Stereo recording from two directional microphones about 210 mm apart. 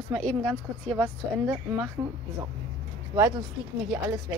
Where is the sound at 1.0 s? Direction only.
15° right (ahead or behind).